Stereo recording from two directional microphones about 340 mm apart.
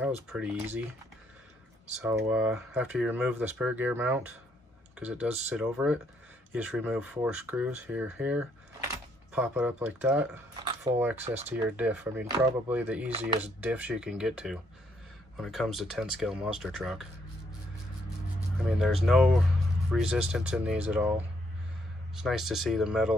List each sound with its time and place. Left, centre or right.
0.3 s speech: centre
2.0 s speech: centre
13.1 s speech: centre
13.4 s speech: centre
18.7 s speech: centre
22.1 s speech: centre